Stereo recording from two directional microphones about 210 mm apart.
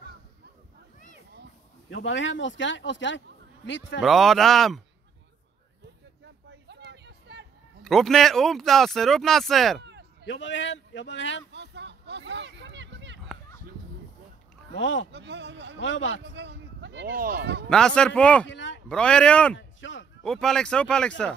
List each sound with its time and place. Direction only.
1.9 s speech: 60° left (ahead or behind)
4.0 s speech: centre (ahead or behind)
6.5 s a sound: 55° right (ahead or behind)
7.8 s speech: centre (ahead or behind)
10.2 s speech: 60° left (ahead or behind)
11.5 s a sound: 55° right (ahead or behind)
14.7 s speech: 65° left (ahead or behind)
15.1 s speech: 55° right (ahead or behind)
15.8 s speech: 60° left (ahead or behind)
16.3 s a man's voice: 55° right (ahead or behind)
17.6 s speech: 5° left (ahead or behind)
19.5 s a man's voice: 60° left (ahead or behind)
20.2 s speech: 5° left (ahead or behind)